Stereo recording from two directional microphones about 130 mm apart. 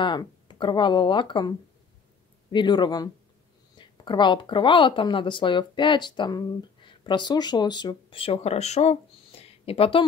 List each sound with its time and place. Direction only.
0.0 s speech: 35° left (ahead or behind)
2.5 s speech: 35° left (ahead or behind); by 8.9 s 55° left (ahead or behind)
9.4 s a sound: 50° left (ahead or behind)